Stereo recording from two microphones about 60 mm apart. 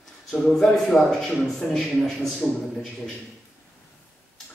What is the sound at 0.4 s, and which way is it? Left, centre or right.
A man's voice, centre.